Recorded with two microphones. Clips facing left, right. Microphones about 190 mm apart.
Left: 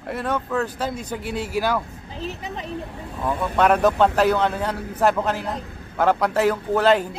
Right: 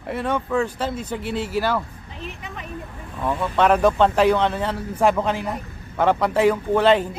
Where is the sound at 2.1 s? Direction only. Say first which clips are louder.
Left 4 dB; 35° left (ahead or behind).